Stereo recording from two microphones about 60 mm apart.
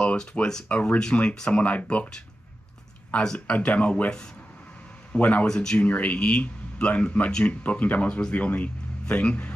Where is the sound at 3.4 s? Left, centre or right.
Left.